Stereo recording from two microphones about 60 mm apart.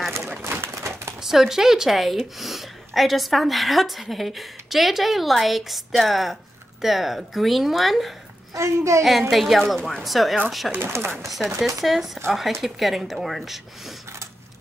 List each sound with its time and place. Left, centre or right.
0.4 s pigeon: right
1.2 s a woman's voice: centre
8.5 s a woman's voice: right
9.3 s a woman's voice: centre
10.7 s speech: right
11.2 s a woman's voice: centre